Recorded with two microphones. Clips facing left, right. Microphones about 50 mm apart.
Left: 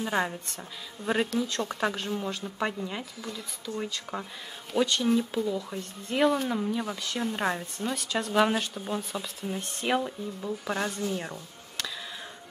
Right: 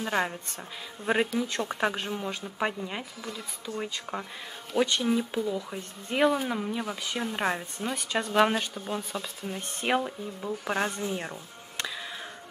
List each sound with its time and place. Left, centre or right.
1.0 s speech: centre
10.6 s speech: right